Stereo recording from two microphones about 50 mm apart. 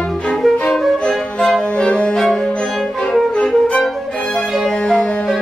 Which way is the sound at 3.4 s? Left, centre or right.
Centre.